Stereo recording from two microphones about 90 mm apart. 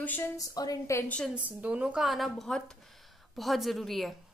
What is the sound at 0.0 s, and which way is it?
Speech, 20° left (ahead or behind).